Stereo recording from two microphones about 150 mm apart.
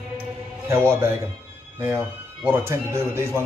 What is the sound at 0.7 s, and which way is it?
Speech, 15° right (ahead or behind).